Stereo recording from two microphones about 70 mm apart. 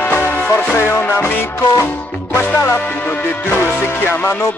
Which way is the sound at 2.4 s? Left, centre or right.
Left.